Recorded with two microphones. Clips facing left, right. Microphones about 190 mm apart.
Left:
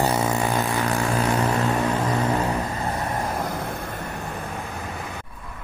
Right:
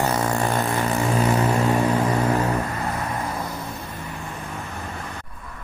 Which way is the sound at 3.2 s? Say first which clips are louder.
Left 2 dB; 50° left (ahead or behind).